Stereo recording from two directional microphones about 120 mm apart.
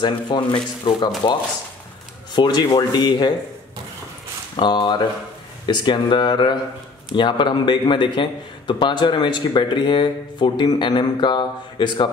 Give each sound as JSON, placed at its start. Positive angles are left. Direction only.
{"t": 0.0, "sound": "a man's voice", "side_deg": 40}
{"t": 2.3, "sound": "a man's voice", "side_deg": 35}
{"t": 4.6, "sound": "a man's voice", "side_deg": 40}